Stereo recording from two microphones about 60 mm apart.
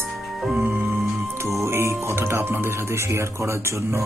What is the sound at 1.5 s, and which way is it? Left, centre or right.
Speech, right.